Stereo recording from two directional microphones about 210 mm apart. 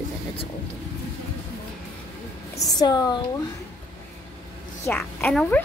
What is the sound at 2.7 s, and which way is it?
Speech, 20° left (ahead or behind).